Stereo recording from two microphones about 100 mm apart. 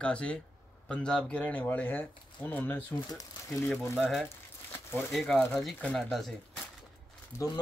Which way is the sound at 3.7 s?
Centre (ahead or behind).